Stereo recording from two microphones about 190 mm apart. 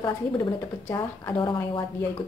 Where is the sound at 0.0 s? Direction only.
25° left (ahead or behind).